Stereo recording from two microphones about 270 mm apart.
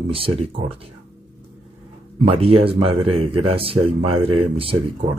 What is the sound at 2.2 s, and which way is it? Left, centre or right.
Speech, right.